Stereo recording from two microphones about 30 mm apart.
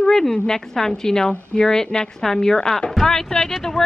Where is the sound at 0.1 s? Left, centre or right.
Centre.